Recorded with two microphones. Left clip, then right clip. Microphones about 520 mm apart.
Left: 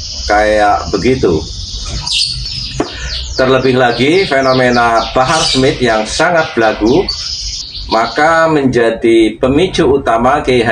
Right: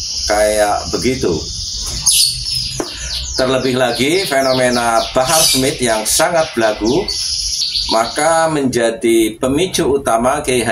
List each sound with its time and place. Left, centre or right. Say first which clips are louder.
0.3 s speech: left 4 dB; right
3.3 s speech: left 5 dB; right
7.9 s speech: left 5 dB; right